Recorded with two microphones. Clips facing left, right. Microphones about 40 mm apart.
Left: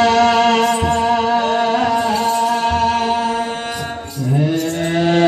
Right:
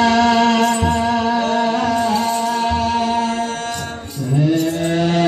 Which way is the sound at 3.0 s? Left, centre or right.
Centre.